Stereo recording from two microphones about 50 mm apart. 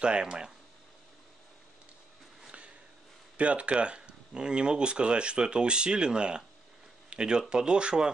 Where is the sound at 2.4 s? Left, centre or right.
Right.